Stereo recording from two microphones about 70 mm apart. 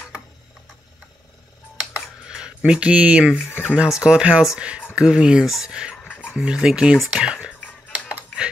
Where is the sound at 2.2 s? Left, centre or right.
Centre.